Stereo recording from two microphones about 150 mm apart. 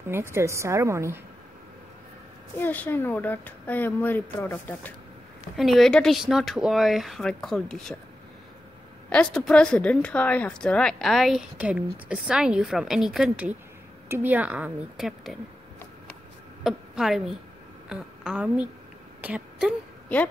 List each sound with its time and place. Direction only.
0.1 s a woman's voice: 15° right (ahead or behind)
2.5 s speech: 10° left (ahead or behind)
5.6 s speech: centre (ahead or behind)
9.1 s a woman's voice: 5° left (ahead or behind)
16.6 s a woman's voice: centre (ahead or behind)